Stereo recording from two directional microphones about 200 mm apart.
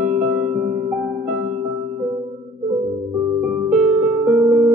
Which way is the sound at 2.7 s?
25° right (ahead or behind).